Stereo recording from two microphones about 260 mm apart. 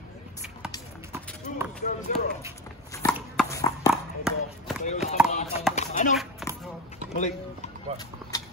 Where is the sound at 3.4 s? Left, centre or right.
Centre.